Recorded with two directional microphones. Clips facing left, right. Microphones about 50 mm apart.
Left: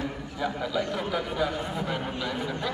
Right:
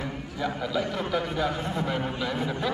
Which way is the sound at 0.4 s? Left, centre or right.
Centre.